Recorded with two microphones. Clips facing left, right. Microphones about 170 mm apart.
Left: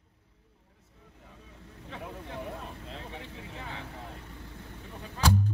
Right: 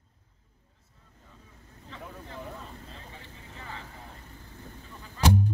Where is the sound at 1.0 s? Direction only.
75° left (ahead or behind).